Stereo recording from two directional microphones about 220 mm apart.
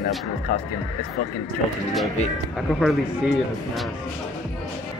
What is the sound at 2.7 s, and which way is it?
Speech, centre (ahead or behind).